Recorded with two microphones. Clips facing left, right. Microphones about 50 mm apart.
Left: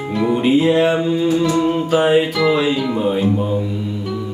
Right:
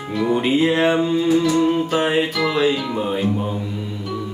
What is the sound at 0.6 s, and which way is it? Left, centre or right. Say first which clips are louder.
Mantra: left 1 dB; centre.